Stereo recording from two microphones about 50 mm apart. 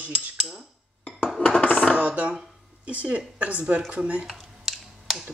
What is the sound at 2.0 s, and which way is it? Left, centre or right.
A woman's voice, right.